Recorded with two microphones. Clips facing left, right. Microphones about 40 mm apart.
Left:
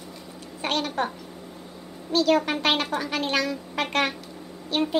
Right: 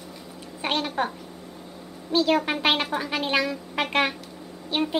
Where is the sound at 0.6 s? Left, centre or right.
Centre.